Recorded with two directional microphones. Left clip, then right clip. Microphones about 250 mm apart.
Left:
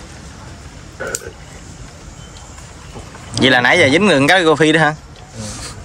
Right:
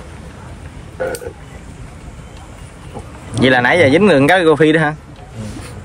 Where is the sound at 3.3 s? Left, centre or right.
Centre.